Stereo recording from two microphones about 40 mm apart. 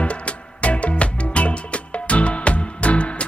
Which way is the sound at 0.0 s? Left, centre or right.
Left.